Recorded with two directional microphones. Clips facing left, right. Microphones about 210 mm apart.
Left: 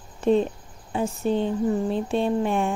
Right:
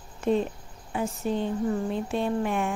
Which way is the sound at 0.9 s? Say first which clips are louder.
Left 4 dB; 30° left (ahead or behind).